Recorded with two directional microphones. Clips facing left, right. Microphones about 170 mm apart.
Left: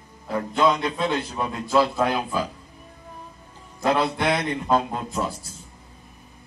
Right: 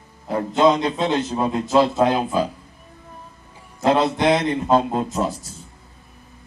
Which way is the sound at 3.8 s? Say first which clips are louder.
Right 5 dB; 25° right (ahead or behind).